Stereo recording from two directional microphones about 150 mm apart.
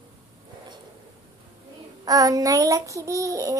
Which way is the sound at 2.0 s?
25° right (ahead or behind).